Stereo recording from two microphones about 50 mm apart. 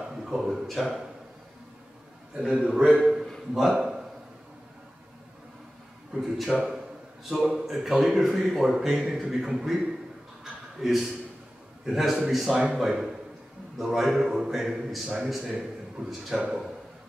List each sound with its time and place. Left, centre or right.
0.2 s a sound: centre
2.3 s a man's voice: centre
3.5 s a man's voice: centre
6.1 s a man's voice: centre
7.4 s a man's voice: centre
10.4 s a sound: centre
11.8 s a man's voice: centre